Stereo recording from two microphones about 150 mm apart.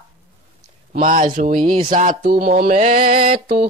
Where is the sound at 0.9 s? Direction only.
65° right (ahead or behind).